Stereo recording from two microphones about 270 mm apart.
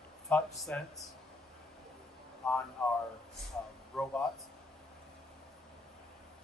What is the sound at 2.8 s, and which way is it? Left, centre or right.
A man's voice, centre.